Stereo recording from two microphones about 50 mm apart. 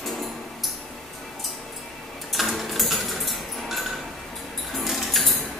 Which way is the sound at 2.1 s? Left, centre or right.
Centre.